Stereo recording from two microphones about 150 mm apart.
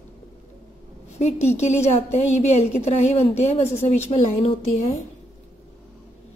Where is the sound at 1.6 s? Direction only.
45° left (ahead or behind).